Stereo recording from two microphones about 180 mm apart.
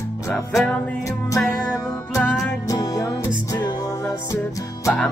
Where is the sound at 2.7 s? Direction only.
20° left (ahead or behind).